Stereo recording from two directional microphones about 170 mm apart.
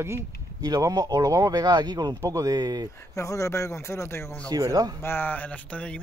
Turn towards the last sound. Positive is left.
turn(degrees=5)  # may be behind; listen again after turning